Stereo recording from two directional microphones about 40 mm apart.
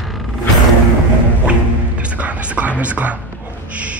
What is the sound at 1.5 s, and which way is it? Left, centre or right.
Music, right.